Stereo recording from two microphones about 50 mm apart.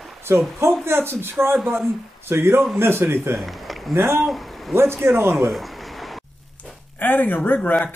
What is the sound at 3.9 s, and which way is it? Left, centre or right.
Speech, right.